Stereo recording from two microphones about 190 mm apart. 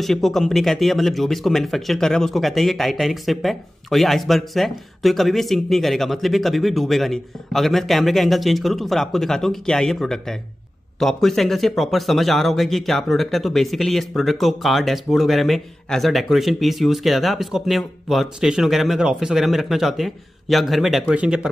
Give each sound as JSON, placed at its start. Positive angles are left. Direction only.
{"t": 0.0, "sound": "a man's voice", "side_deg": 0}